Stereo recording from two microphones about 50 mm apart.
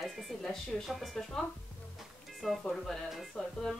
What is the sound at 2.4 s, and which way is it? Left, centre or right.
Speech, centre.